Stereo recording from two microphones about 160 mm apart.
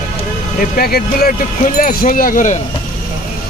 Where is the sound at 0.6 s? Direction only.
70° left (ahead or behind); by 2.6 s 55° left (ahead or behind).